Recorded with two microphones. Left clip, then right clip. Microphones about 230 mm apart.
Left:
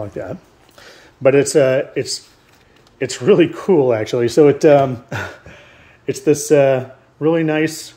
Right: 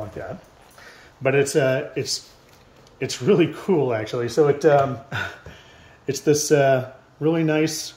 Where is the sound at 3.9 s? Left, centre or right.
Left.